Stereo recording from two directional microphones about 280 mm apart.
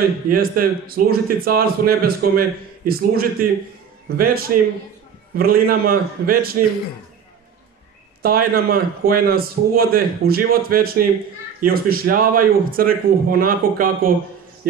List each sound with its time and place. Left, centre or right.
0.3 s a man's voice: right
8.2 s a man's voice: right